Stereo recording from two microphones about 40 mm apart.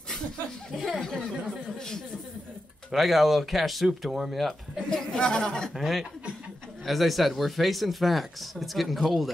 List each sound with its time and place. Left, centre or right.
0.7 s speech: centre
2.9 s speech: centre
4.8 s speech: centre
5.8 s speech: centre